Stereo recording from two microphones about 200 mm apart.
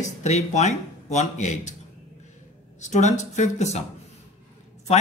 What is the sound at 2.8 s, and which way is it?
Speech, 35° left (ahead or behind).